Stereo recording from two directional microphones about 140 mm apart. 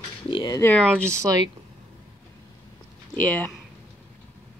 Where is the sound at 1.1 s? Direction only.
20° right (ahead or behind).